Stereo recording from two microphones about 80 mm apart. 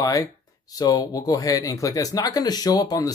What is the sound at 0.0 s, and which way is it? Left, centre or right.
Speech, left.